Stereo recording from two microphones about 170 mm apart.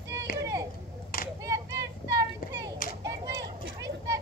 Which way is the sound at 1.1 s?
55° left (ahead or behind).